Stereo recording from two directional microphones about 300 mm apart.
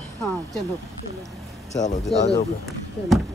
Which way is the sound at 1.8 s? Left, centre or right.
Left.